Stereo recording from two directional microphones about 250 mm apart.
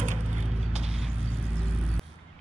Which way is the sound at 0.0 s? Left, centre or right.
Right.